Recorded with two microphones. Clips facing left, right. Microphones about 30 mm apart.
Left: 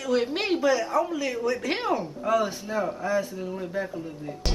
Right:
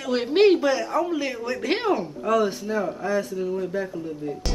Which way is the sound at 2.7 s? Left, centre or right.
Centre.